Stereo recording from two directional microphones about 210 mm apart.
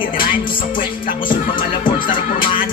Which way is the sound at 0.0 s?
40° left (ahead or behind).